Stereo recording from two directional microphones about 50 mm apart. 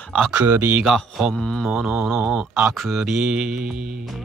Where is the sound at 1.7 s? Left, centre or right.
Centre.